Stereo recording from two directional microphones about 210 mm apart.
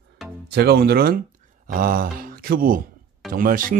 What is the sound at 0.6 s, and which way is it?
Speech, 50° right (ahead or behind).